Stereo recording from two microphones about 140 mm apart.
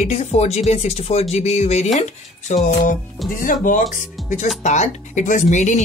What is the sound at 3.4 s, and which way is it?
Speech, 70° left (ahead or behind).